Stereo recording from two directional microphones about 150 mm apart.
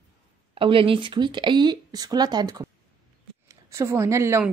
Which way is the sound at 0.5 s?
35° right (ahead or behind).